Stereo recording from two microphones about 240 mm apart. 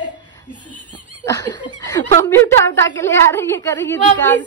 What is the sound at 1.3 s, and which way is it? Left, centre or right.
A woman's voice, centre.